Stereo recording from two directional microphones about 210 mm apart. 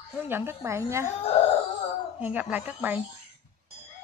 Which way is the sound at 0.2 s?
10° right (ahead or behind).